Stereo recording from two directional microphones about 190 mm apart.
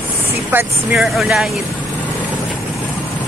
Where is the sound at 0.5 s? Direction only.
5° right (ahead or behind).